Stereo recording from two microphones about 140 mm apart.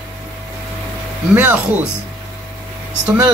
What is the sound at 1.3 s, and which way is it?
Speech, 10° right (ahead or behind).